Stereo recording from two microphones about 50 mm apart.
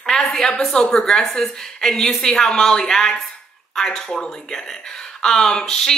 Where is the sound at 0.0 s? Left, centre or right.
Centre.